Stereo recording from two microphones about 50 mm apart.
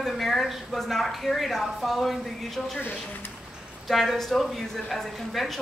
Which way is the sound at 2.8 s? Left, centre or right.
Left.